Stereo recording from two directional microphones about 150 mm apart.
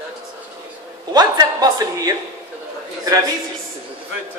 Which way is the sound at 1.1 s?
25° right (ahead or behind).